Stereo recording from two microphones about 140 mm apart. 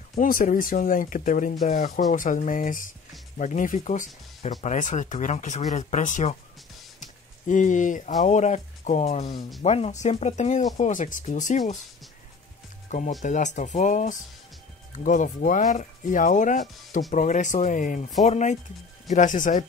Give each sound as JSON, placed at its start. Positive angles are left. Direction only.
{"t": 0.1, "sound": "speech", "side_deg": 75}
{"t": 3.3, "sound": "speech", "side_deg": 65}
{"t": 7.0, "sound": "a sound", "side_deg": 65}
{"t": 8.2, "sound": "speech", "side_deg": 60}
{"t": 9.2, "sound": "speech", "side_deg": 30}
{"t": 9.6, "sound": "speech", "side_deg": 50}
{"t": 10.8, "sound": "speech", "side_deg": 65}
{"t": 13.2, "sound": "speech", "side_deg": 60}
{"t": 18.2, "sound": "speech", "side_deg": 55}